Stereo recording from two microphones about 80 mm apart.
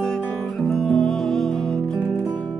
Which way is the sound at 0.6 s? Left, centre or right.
Centre.